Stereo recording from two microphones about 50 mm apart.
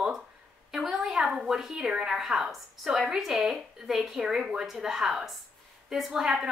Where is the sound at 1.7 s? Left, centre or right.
Centre.